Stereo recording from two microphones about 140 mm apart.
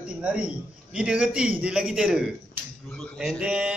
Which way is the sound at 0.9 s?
5° right (ahead or behind).